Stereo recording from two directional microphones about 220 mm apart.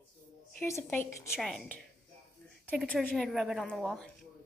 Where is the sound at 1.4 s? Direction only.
Centre (ahead or behind).